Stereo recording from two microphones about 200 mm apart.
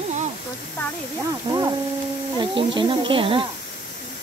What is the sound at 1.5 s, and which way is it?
Speech, 20° right (ahead or behind).